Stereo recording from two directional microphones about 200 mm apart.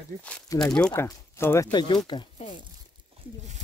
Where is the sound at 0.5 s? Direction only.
15° left (ahead or behind).